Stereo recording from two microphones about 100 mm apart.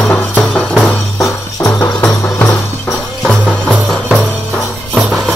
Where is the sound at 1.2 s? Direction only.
30° left (ahead or behind).